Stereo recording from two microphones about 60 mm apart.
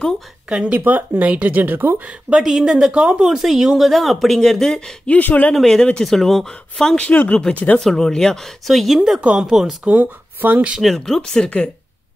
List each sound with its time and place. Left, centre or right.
0.5 s speech: centre
0.7 s speech: right
2.0 s speech: centre
5.0 s speech: left
5.5 s speech: centre
7.1 s speech: left
7.8 s speech: centre
9.8 s speech: right
10.8 s speech: centre